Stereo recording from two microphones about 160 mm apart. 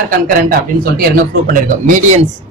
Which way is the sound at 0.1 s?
65° right (ahead or behind).